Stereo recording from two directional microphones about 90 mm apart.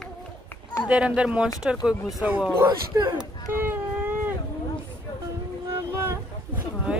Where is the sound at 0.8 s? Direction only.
10° right (ahead or behind).